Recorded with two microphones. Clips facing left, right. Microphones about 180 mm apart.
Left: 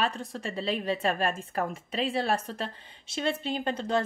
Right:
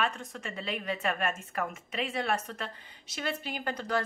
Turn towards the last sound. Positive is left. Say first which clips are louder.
# left 4 dB
turn(degrees=25)  # may be behind; listen again after turning